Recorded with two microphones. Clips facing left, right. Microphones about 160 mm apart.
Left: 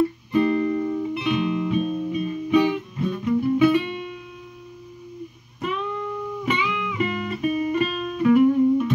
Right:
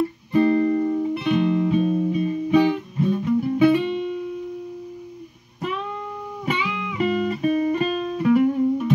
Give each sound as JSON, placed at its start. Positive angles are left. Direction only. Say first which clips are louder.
{"t": 0.3, "sound": "music", "louder": "right 5 dB", "side_deg": -35}
{"t": 6.4, "sound": "music", "louder": "even", "side_deg": -35}